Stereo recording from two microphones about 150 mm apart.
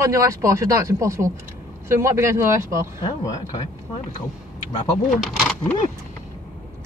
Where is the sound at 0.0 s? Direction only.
20° right (ahead or behind).